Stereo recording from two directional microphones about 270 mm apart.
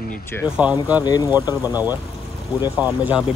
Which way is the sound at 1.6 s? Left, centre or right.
Centre.